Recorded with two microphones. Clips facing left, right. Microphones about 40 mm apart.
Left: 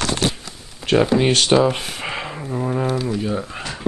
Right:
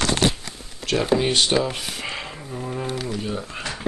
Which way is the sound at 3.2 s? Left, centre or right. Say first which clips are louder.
Left 5 dB; centre.